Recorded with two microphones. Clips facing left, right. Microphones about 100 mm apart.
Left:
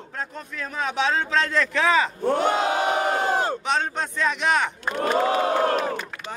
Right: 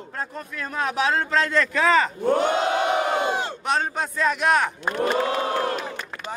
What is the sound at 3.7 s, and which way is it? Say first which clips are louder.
A man's voice: right 1 dB; 5° right (ahead or behind).